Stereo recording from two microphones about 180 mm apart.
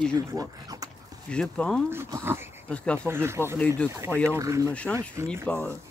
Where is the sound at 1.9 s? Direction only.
15° right (ahead or behind).